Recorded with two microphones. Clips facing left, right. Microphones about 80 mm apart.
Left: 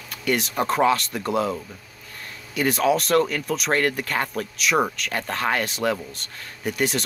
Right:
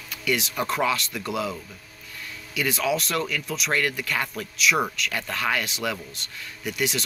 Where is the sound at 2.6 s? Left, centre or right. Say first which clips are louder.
Left 5 dB; left.